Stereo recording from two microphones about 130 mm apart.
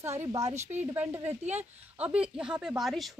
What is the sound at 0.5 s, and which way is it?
Speech, 65° right (ahead or behind).